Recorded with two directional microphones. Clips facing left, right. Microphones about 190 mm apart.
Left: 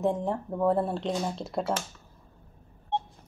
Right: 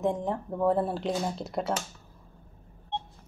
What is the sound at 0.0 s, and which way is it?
Speech, centre (ahead or behind).